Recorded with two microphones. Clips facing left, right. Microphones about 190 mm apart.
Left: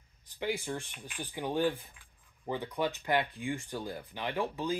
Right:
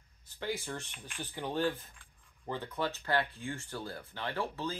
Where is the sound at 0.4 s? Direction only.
15° left (ahead or behind).